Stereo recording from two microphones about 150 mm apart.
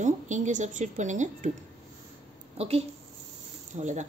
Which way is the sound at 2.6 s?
45° right (ahead or behind).